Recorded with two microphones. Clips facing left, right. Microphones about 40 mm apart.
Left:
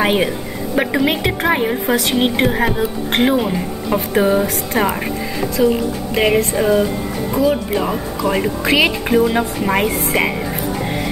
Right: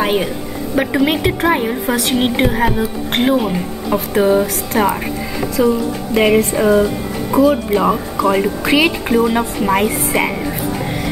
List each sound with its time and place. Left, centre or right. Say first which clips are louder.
0.0 s a woman's voice: left 1 dB; centre
5.6 s speech: right 1 dB; left
6.1 s a woman's voice: right 3 dB; centre